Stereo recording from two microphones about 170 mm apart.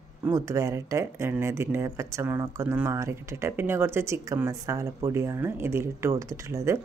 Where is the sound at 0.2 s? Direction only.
15° right (ahead or behind).